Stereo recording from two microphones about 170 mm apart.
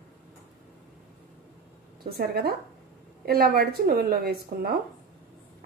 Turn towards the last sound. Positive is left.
turn(degrees=-60)  # may be behind; listen again after turning